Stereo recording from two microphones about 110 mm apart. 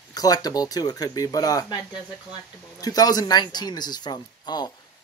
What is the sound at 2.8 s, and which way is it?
Speech, 35° left (ahead or behind).